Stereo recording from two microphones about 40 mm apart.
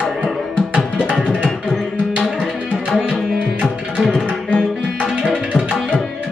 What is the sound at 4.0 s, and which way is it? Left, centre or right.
Tabla, centre.